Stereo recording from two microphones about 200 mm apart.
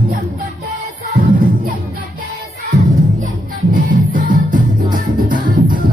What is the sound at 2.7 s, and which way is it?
Music, 40° right (ahead or behind).